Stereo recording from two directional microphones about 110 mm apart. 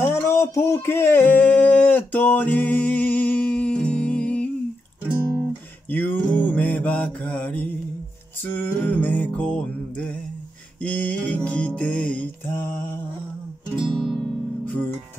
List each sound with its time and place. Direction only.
0.0 s a sound: 25° left (ahead or behind)
5.9 s mantra: 15° left (ahead or behind)
8.5 s music: 15° left (ahead or behind)
12.4 s mantra: 20° left (ahead or behind)
13.7 s music: centre (ahead or behind)